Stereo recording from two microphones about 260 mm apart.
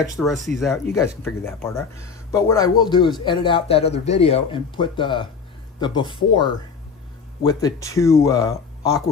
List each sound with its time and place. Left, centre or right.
0.2 s speech: centre
1.0 s speech: centre